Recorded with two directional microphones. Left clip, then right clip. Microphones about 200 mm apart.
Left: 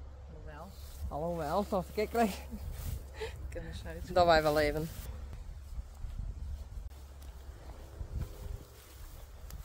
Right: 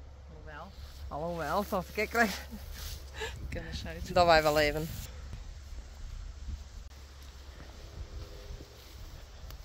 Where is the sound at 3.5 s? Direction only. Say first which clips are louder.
Right 4 dB; 40° left (ahead or behind).